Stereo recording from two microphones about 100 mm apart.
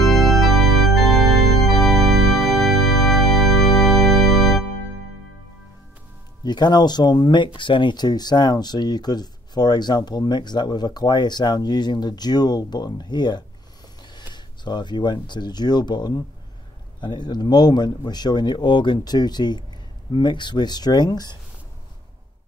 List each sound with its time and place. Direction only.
0.0 s organ: centre (ahead or behind)
6.4 s speech: 45° left (ahead or behind)